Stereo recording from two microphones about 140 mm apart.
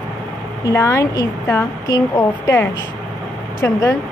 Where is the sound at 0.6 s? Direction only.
20° left (ahead or behind).